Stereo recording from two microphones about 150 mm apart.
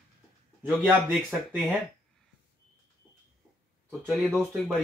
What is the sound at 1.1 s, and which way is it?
Speech, 5° right (ahead or behind).